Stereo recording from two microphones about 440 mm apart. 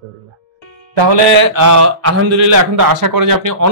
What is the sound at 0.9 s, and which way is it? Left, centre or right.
Speech, right.